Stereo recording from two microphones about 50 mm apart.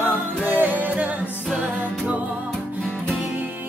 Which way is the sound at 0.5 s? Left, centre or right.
Right.